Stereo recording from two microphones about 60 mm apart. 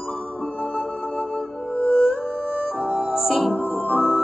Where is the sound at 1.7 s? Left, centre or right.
Left.